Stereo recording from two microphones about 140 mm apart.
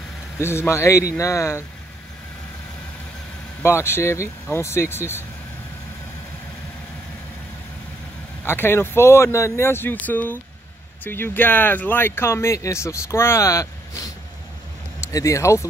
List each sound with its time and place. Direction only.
0.4 s speech: 20° left (ahead or behind)
3.6 s speech: 20° left (ahead or behind)
8.5 s speech: 15° left (ahead or behind)